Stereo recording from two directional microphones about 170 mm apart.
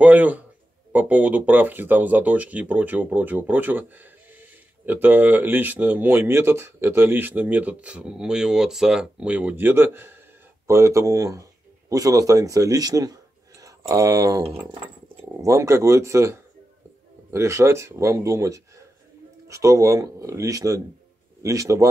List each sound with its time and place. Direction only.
0.0 s speech: 10° right (ahead or behind)